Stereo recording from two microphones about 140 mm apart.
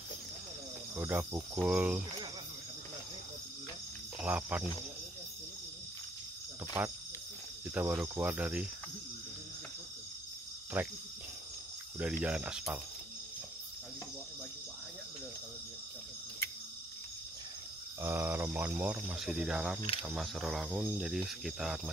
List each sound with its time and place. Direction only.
0.9 s speech: 15° right (ahead or behind)
4.2 s speech: 10° right (ahead or behind)
6.8 s speech: 15° right (ahead or behind)
10.8 s speech: 10° right (ahead or behind)
12.0 s speech: 10° right (ahead or behind)
18.0 s speech: 15° right (ahead or behind)